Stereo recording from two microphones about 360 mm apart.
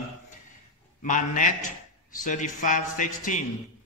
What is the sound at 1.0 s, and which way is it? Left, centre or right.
A man's voice, left.